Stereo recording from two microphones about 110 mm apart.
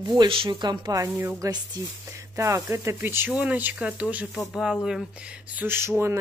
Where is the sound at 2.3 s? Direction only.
25° right (ahead or behind); by 5.0 s 5° right (ahead or behind).